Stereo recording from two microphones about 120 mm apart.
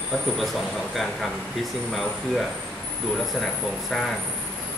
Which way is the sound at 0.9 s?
Centre (ahead or behind).